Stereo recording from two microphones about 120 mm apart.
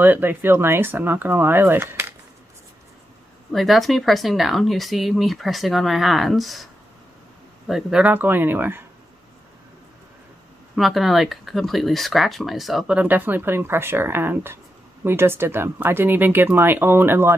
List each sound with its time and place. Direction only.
0.0 s speech: 15° right (ahead or behind)
3.5 s speech: centre (ahead or behind); by 8.8 s 15° right (ahead or behind)
10.8 s speech: centre (ahead or behind); by 17.4 s 20° right (ahead or behind)